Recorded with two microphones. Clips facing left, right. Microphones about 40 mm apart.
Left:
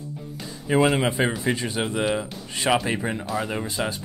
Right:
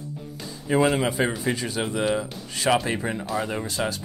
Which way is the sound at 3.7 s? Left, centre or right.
Left.